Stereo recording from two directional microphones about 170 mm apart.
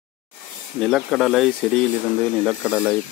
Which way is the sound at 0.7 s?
Centre (ahead or behind).